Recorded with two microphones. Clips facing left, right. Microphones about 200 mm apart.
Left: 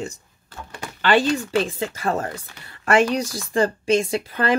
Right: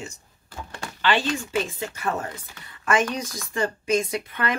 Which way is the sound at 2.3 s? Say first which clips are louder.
Left 4 dB; 70° left (ahead or behind).